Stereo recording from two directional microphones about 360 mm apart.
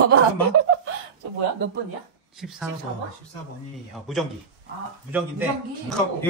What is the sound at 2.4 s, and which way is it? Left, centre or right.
Speech, centre.